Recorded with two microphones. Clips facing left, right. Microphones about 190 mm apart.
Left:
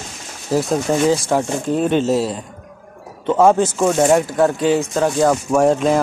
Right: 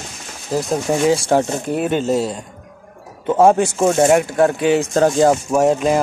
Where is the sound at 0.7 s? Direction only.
15° right (ahead or behind).